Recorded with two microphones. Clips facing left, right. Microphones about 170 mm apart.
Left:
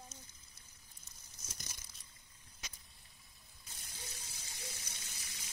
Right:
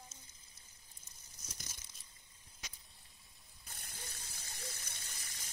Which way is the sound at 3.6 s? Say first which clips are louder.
Right 1 dB; 55° right (ahead or behind).